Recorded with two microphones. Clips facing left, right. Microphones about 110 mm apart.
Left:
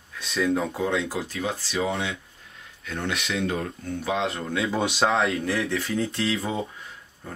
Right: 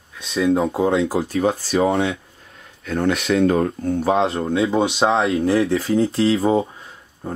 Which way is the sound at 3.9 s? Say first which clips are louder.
Right 7 dB; 35° right (ahead or behind).